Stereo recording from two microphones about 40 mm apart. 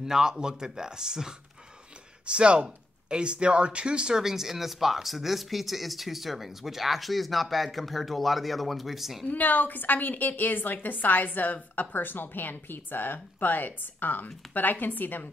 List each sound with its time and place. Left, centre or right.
0.0 s speech: centre
2.2 s speech: right; by 9.2 s centre
9.3 s a woman's voice: left